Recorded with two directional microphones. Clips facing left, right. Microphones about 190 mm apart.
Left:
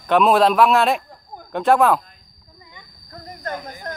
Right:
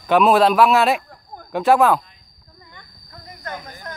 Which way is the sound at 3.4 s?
40° left (ahead or behind).